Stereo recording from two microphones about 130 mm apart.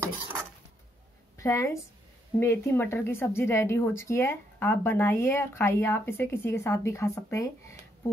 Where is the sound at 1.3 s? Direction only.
25° left (ahead or behind).